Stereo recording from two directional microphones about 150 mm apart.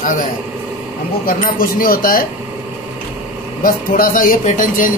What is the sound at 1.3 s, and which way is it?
Speech, 70° left (ahead or behind).